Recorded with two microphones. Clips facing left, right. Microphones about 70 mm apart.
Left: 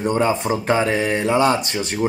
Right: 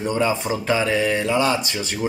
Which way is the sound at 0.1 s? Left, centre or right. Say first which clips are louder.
Left 1 dB; left.